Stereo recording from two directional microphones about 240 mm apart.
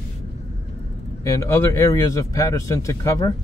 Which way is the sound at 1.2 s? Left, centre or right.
Centre.